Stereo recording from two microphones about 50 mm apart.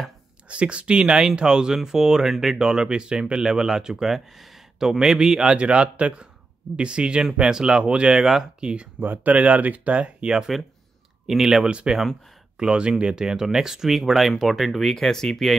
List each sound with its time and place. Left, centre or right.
0.5 s speech: right
9.0 s speech: right
11.2 s speech: centre